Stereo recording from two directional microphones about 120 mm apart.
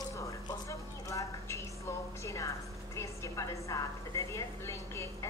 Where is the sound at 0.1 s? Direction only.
25° left (ahead or behind).